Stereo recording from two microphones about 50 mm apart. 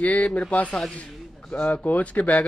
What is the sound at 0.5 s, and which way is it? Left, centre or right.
Speech, left.